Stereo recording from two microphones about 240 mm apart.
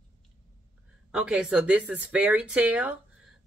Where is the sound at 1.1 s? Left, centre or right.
Centre.